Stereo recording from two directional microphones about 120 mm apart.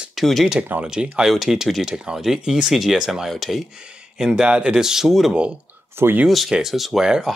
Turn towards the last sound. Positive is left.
turn(degrees=-5)  # may be behind; listen again after turning